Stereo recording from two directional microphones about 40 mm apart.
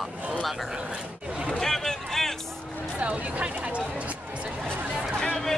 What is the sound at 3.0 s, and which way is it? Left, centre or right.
Speech, right.